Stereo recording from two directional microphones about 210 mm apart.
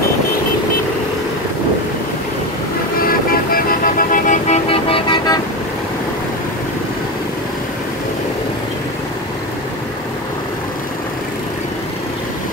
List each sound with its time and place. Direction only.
3.0 s vehicle: 45° left (ahead or behind); by 5.4 s 20° left (ahead or behind)